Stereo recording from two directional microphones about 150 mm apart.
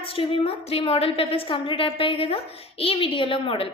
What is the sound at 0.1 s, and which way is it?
A woman's voice, 35° left (ahead or behind).